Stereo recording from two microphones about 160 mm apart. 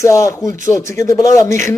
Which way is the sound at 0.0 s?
20° left (ahead or behind).